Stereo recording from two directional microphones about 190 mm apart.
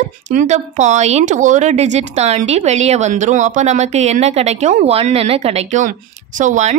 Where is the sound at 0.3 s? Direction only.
40° right (ahead or behind).